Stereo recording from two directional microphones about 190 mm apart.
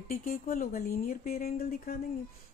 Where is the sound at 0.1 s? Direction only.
45° left (ahead or behind).